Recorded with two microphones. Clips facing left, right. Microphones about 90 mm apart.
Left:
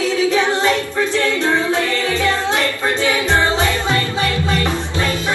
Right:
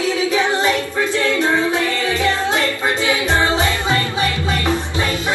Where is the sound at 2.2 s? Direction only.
20° right (ahead or behind).